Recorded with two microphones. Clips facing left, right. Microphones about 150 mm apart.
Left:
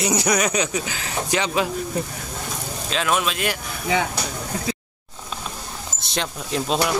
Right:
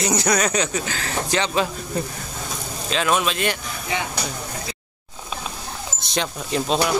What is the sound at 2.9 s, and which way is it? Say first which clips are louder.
Speech: right 2 dB; centre (ahead or behind).